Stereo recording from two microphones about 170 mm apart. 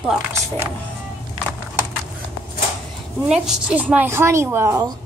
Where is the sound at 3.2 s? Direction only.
5° right (ahead or behind).